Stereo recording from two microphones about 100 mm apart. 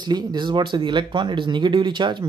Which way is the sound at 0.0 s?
45° right (ahead or behind).